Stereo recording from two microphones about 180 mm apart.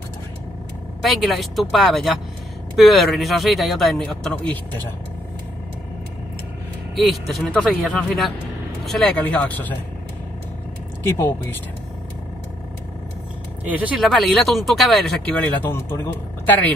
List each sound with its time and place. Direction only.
1.0 s speech: centre (ahead or behind)
7.1 s speech: centre (ahead or behind)
11.1 s speech: 15° left (ahead or behind)
13.7 s speech: 10° right (ahead or behind)
14.0 s speech: centre (ahead or behind)